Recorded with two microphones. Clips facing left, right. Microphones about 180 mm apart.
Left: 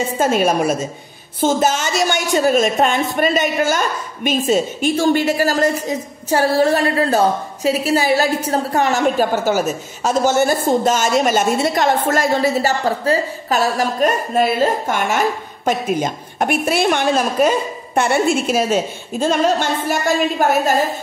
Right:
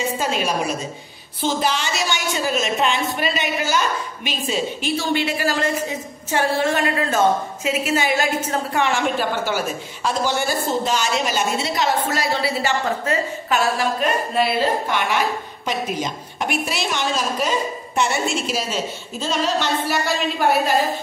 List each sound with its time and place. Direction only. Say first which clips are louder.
0.2 s a woman's voice: left 11 dB; 50° left (ahead or behind)